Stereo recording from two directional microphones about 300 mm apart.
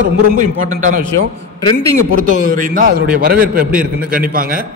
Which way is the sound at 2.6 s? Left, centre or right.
Right.